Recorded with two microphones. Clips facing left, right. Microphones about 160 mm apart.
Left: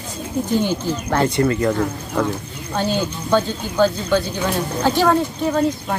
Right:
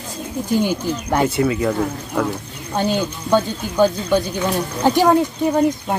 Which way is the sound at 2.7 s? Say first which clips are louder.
Right 1 dB; 15° right (ahead or behind).